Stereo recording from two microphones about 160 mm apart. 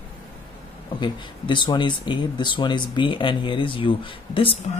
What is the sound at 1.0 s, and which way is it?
Speech, 30° left (ahead or behind).